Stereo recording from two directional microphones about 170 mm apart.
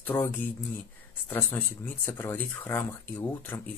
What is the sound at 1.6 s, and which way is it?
Speech, 10° left (ahead or behind).